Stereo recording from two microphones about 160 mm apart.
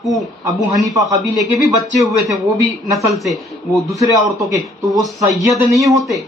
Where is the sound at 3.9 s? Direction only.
20° right (ahead or behind).